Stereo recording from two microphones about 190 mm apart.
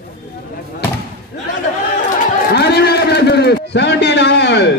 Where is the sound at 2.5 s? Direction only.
60° left (ahead or behind).